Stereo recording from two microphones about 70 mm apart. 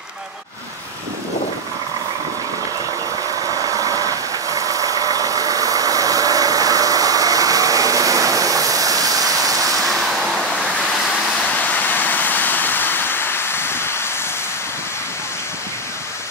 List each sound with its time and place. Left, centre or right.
3.5 s vehicle: right
9.8 s vehicle: centre
11.4 s a sound: left